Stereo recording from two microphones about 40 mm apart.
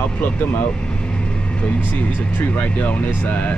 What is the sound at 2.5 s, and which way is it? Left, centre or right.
Speech, left.